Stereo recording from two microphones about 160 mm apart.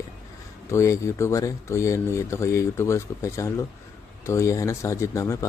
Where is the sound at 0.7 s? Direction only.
20° left (ahead or behind).